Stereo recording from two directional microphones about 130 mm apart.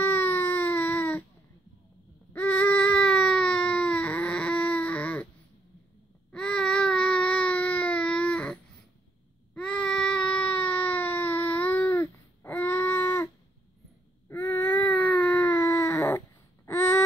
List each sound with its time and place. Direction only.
0.0 s baby cry: 15° left (ahead or behind)
2.3 s baby cry: 15° left (ahead or behind)
6.3 s baby cry: 5° left (ahead or behind)
14.3 s baby cry: 15° left (ahead or behind)
16.6 s a sound: 20° left (ahead or behind)